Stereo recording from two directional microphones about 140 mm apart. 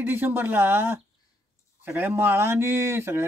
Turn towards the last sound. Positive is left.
turn(degrees=-15)  # may be behind; listen again after turning